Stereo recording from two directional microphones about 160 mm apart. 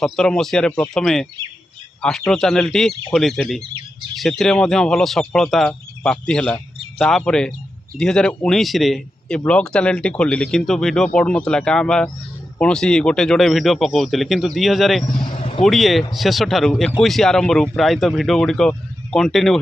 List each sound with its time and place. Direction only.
0.0 s speech: 5° left (ahead or behind)
15.0 s vehicle: 30° left (ahead or behind)
15.6 s speech: centre (ahead or behind)